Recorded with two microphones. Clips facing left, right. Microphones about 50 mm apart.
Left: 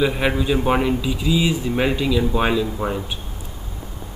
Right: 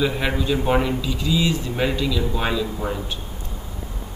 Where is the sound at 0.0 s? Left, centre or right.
Centre.